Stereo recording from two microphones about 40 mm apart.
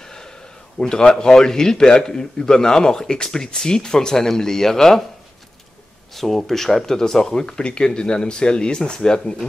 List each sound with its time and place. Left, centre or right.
0.0 s a sound: centre
0.7 s a man's voice: centre
6.1 s a man's voice: centre